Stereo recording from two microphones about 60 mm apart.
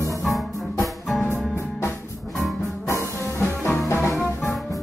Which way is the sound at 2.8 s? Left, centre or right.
Left.